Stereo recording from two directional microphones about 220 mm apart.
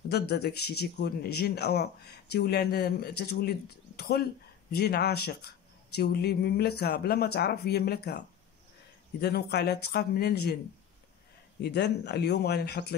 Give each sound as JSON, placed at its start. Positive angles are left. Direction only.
{"t": 0.1, "sound": "speech", "side_deg": 45}
{"t": 9.2, "sound": "speech", "side_deg": 45}
{"t": 11.6, "sound": "speech", "side_deg": 50}